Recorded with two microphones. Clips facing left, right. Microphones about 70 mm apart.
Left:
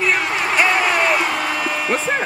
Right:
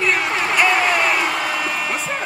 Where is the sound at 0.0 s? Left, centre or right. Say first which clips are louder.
Even; centre.